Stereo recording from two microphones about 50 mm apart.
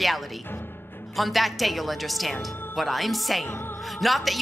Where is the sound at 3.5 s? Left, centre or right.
Left.